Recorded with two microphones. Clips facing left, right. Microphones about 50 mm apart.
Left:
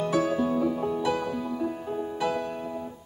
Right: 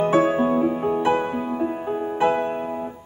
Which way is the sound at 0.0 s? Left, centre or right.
Right.